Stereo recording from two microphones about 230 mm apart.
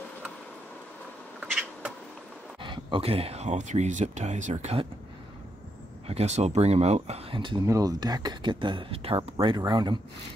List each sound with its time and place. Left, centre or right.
1.4 s cat: centre
2.6 s speech: right
6.0 s speech: right